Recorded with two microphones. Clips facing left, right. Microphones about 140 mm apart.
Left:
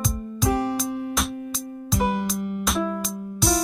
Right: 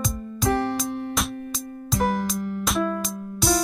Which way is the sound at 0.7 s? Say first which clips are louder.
Left 1 dB; centre (ahead or behind).